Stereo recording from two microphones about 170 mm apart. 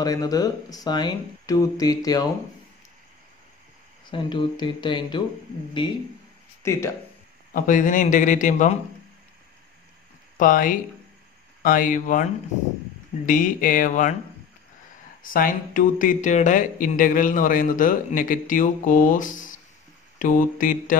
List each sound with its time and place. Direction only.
0.0 s speech: 20° left (ahead or behind)
4.1 s speech: 30° left (ahead or behind)
6.6 s speech: 15° left (ahead or behind)
7.5 s speech: 50° left (ahead or behind)
10.3 s speech: 50° left (ahead or behind)
15.2 s speech: 55° left (ahead or behind)